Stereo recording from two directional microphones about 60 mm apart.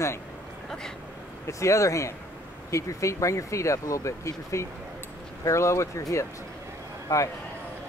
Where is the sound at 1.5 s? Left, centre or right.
Left.